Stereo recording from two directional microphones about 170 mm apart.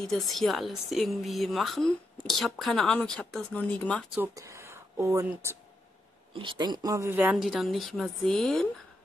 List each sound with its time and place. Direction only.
0.1 s speech: centre (ahead or behind)
4.4 s speech: 15° right (ahead or behind)
6.3 s speech: 25° right (ahead or behind)
7.2 s speech: centre (ahead or behind)